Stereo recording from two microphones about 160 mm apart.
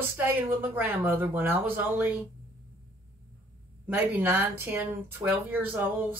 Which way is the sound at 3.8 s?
10° right (ahead or behind).